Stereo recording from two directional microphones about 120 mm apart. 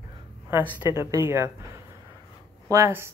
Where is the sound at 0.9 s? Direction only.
25° right (ahead or behind).